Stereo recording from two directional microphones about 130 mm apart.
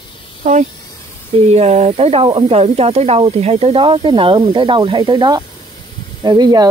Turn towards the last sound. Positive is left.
turn(degrees=-30)  # may be behind; listen again after turning